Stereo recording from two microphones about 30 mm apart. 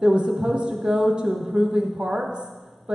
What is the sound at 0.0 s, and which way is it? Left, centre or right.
Speech, right.